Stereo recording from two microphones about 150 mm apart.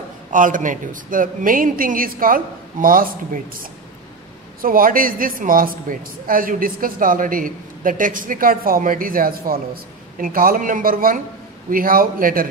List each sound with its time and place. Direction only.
0.3 s speech: 60° right (ahead or behind)
4.6 s speech: 70° right (ahead or behind)